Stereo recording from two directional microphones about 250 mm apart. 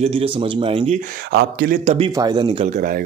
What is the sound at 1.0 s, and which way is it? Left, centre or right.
Speech, right.